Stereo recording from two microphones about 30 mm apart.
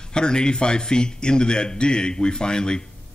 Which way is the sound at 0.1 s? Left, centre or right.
Left.